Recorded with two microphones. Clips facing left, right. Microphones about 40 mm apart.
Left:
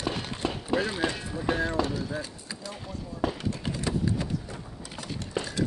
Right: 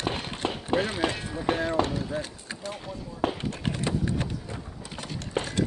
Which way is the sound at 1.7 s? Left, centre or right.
Right.